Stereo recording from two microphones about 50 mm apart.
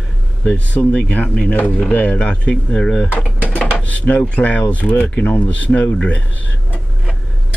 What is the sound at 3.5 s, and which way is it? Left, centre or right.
Dishes, left.